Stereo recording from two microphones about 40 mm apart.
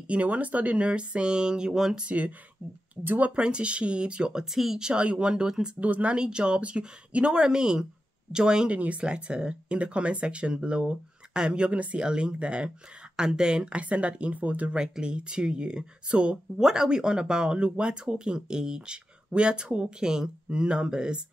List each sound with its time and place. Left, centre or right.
0.1 s speech: right
0.7 s speech: right
2.0 s speech: right
3.3 s speech: right
4.5 s speech: centre
4.7 s speech: centre
5.8 s speech: right
6.1 s speech: right
8.6 s speech: right
9.0 s speech: right
12.0 s speech: right
13.7 s speech: right
14.8 s speech: right
16.5 s speech: centre